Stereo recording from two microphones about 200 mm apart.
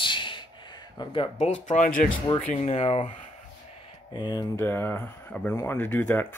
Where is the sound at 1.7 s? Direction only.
40° left (ahead or behind).